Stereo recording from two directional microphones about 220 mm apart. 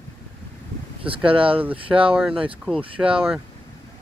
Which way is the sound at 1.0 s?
25° right (ahead or behind).